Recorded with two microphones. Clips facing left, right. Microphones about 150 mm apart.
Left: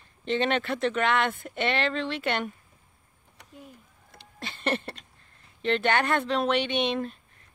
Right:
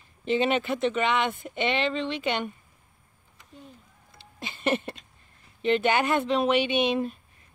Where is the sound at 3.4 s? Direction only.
70° left (ahead or behind).